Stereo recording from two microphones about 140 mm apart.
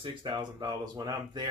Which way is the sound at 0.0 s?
35° right (ahead or behind).